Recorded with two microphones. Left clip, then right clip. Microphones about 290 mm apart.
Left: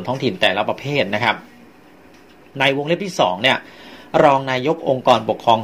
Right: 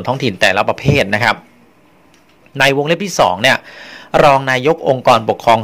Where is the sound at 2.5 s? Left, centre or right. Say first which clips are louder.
Right 5 dB; right.